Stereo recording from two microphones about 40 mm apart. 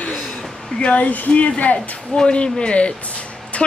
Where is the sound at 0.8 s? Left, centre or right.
Left.